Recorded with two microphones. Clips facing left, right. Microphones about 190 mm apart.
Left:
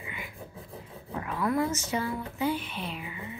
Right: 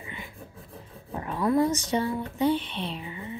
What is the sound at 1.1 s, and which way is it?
Speech, 30° right (ahead or behind).